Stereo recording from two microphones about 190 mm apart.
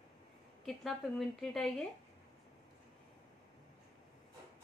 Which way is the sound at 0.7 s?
Centre (ahead or behind).